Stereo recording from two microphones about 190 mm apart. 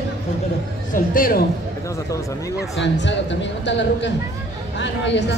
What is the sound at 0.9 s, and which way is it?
Speech, 50° left (ahead or behind).